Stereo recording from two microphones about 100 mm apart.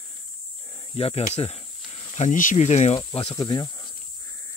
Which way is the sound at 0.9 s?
75° left (ahead or behind).